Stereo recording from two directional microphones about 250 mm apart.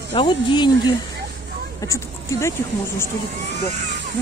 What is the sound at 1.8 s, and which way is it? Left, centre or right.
Speech, centre.